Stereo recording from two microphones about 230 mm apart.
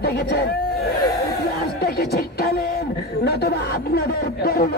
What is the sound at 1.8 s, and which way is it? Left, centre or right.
Speech, left.